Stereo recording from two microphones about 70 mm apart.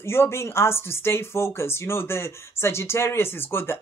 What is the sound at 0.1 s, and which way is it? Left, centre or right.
Speech, left.